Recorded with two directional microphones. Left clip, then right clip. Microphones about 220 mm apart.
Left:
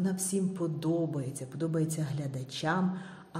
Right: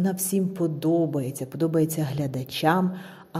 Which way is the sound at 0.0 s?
35° right (ahead or behind).